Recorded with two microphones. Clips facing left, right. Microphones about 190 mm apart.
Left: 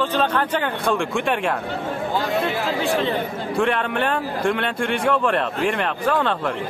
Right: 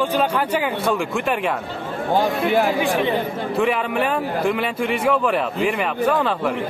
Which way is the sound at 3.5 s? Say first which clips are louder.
Right 1 dB; 5° right (ahead or behind).